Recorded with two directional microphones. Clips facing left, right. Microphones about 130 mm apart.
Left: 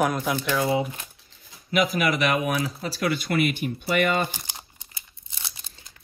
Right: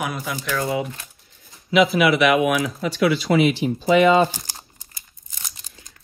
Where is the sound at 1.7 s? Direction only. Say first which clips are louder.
Right 6 dB; 45° left (ahead or behind).